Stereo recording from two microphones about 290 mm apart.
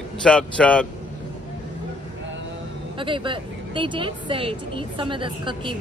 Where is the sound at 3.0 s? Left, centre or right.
Centre.